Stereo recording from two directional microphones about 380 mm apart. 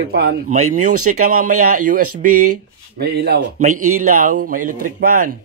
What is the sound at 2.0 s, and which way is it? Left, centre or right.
Speech, right.